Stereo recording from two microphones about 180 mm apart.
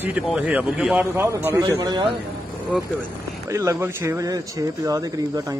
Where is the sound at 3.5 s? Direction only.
15° right (ahead or behind).